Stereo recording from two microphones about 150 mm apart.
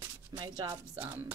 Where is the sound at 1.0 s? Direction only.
10° right (ahead or behind).